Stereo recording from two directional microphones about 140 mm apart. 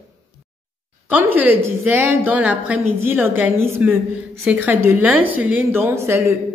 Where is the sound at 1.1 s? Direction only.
10° right (ahead or behind).